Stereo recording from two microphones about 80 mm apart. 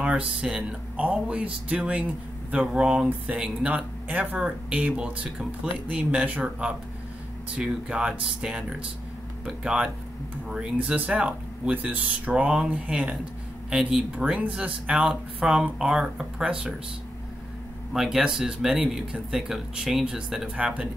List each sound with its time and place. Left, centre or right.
0.0 s speech: centre
10.9 s speech: centre
17.9 s speech: centre